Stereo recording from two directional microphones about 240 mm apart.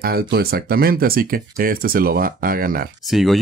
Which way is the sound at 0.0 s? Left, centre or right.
Right.